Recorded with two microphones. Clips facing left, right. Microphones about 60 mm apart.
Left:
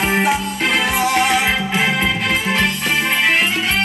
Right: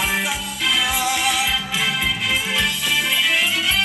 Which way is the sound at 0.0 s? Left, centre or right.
Left.